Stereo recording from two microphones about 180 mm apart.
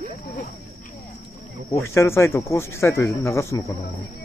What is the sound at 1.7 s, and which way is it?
Speech, 15° left (ahead or behind).